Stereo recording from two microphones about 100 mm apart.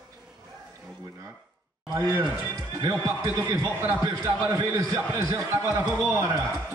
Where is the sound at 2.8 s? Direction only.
30° right (ahead or behind).